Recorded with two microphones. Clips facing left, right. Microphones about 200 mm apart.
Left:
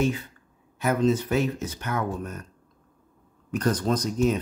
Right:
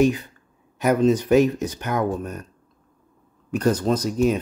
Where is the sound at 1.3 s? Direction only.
15° right (ahead or behind).